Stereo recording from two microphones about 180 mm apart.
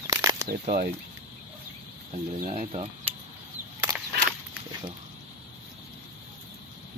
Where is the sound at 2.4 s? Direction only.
45° right (ahead or behind).